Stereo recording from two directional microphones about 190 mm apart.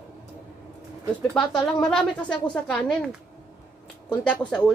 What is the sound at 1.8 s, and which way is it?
A woman's voice, 5° left (ahead or behind).